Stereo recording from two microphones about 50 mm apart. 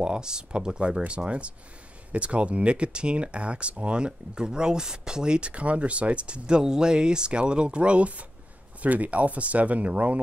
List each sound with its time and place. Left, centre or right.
0.0 s speech: centre